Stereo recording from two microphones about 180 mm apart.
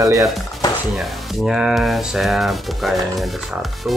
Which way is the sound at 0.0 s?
15° right (ahead or behind).